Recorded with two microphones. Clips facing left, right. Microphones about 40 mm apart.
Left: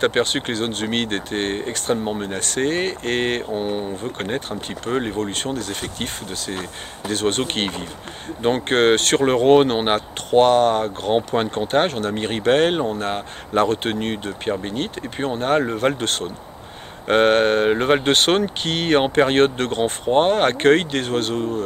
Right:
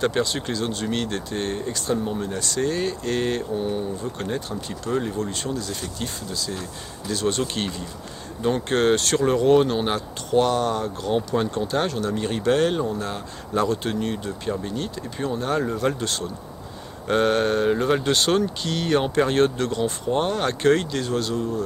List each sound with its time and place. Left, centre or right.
0.0 s speech: left